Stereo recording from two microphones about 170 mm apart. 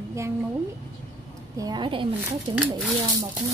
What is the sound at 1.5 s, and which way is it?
Speech, 25° right (ahead or behind).